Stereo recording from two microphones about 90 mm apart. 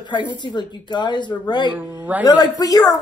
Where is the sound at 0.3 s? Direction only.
55° left (ahead or behind).